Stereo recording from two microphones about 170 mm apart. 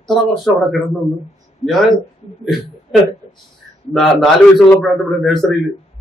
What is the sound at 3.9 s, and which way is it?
A man's voice, centre (ahead or behind).